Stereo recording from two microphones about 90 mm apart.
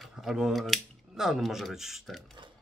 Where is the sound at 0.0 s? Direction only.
5° right (ahead or behind).